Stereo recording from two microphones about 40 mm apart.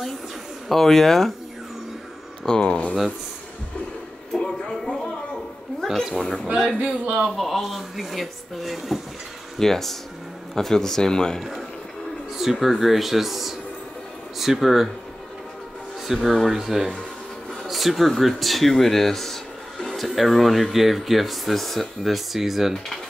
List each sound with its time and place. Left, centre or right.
0.7 s speech: centre
2.4 s speech: centre
4.4 s a sound: centre
6.1 s speech: left
6.4 s a man's voice: right
7.3 s speech: centre
9.6 s speech: centre
12.4 s speech: centre
16.1 s speech: centre